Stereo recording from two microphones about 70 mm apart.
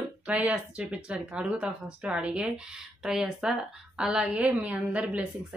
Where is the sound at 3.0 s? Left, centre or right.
Centre.